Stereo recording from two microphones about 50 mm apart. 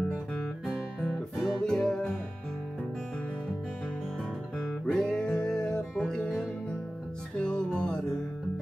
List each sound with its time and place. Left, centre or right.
1.3 s music: centre
1.6 s music: centre
4.6 s music: centre